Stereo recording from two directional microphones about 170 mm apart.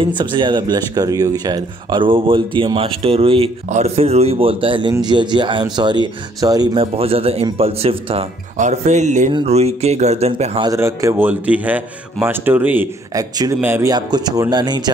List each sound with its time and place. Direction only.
0.0 s speech: 30° right (ahead or behind)
10.7 s a man's voice: 20° right (ahead or behind)